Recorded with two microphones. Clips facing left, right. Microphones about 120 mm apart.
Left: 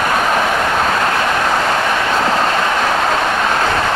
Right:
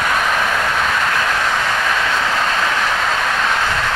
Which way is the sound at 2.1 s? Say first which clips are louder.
Left 4 dB; 35° left (ahead or behind).